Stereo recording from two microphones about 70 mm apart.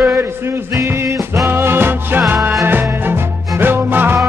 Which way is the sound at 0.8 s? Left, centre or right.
Right.